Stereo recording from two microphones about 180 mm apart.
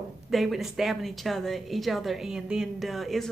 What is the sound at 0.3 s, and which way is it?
A woman's voice, centre (ahead or behind).